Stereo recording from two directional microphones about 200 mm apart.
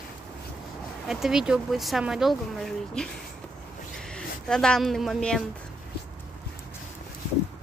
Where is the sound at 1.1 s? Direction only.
Centre (ahead or behind).